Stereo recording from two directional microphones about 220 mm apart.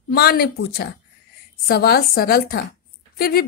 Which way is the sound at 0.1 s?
45° left (ahead or behind).